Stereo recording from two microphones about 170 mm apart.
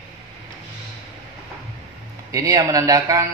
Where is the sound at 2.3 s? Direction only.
20° right (ahead or behind).